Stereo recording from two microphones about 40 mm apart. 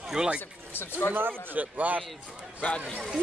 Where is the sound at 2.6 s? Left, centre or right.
Left.